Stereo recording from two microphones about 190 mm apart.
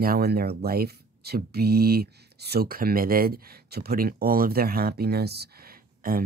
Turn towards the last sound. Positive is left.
turn(degrees=-50)  # may be behind; listen again after turning